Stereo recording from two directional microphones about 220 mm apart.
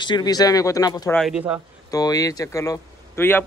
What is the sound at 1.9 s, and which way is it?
Speech, 15° left (ahead or behind).